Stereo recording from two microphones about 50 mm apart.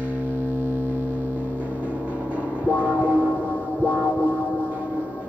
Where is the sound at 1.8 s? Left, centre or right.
Right.